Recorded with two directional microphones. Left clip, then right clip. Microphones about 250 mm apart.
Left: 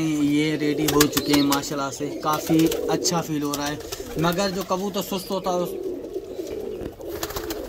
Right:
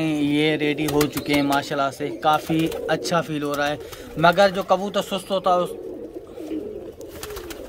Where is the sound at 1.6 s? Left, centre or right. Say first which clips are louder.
Right 4 dB; centre.